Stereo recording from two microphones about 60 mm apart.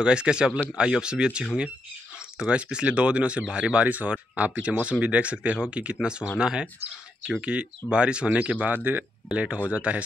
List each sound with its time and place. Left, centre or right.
0.0 s speech: centre
3.8 s speech: right